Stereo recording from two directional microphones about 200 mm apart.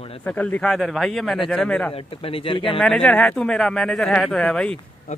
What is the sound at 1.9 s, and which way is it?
Speech, 30° left (ahead or behind).